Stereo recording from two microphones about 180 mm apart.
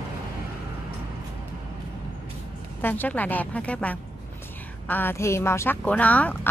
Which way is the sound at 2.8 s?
10° left (ahead or behind).